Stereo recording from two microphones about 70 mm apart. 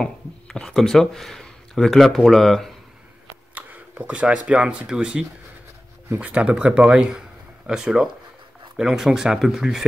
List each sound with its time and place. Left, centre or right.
0.0 s speech: centre
3.5 s speech: right; by 9.8 s centre